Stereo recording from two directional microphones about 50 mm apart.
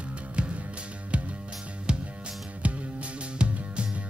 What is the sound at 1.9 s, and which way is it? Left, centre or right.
Music, centre.